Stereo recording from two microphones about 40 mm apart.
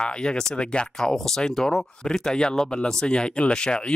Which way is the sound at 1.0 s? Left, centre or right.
Centre.